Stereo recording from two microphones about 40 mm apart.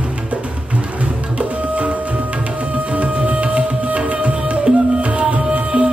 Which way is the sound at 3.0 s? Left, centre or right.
Right.